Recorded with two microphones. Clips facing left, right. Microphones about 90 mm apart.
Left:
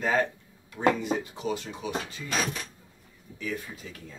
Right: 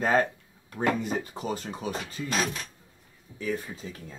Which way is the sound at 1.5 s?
40° right (ahead or behind).